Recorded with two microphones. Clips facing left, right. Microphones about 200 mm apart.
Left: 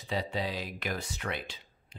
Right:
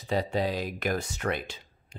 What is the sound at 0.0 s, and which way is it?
Speech, 45° right (ahead or behind).